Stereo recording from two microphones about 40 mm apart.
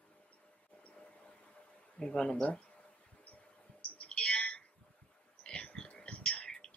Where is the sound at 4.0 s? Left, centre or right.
Left.